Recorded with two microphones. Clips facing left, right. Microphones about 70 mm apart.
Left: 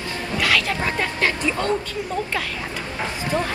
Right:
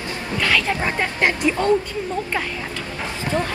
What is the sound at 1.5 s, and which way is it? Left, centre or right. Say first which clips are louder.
Speech: right 7 dB; right.